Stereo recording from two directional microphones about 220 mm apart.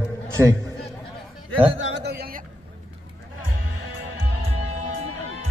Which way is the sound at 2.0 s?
45° right (ahead or behind).